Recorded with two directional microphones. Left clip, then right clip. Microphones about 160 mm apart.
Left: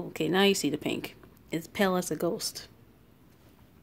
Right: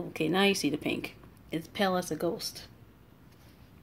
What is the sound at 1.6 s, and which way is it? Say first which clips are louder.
Speech: left 1 dB; 30° left (ahead or behind).